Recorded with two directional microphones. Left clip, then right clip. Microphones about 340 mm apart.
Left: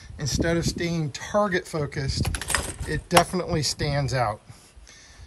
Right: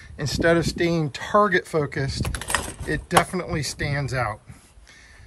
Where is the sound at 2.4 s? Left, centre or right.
Centre.